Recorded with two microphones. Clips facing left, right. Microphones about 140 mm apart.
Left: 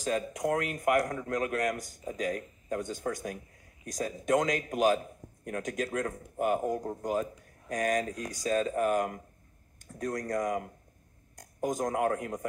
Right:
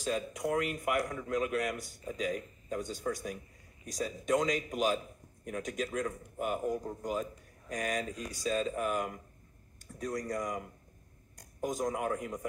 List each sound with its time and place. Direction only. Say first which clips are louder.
0.0 s a man's voice: left 3 dB; 45° left (ahead or behind)